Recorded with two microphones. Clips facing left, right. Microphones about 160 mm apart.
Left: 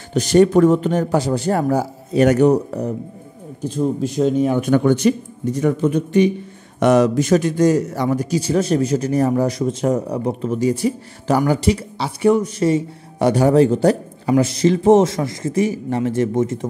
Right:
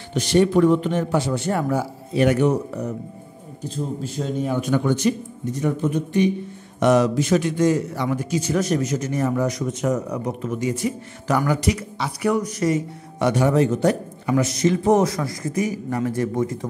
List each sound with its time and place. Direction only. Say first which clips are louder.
0.1 s a man's voice: left 5 dB; 40° left (ahead or behind)
4.2 s speech: left 7 dB; 70° left (ahead or behind)
5.6 s speech: left 5 dB; 80° left
6.8 s a man's voice: left 3 dB; 55° left (ahead or behind); by 16.5 s 25° left (ahead or behind)